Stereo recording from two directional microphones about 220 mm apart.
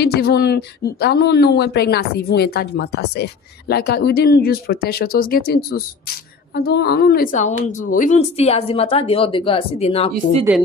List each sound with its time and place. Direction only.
0.0 s a woman's voice: 45° left (ahead or behind); by 10.1 s 25° left (ahead or behind)